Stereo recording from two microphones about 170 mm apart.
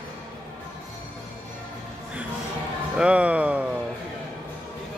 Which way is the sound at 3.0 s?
5° right (ahead or behind).